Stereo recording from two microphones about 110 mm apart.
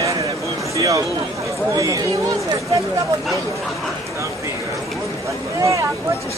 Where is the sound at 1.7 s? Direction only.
30° right (ahead or behind).